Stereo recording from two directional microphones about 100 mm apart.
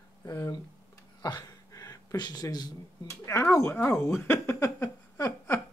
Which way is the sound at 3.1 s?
25° left (ahead or behind).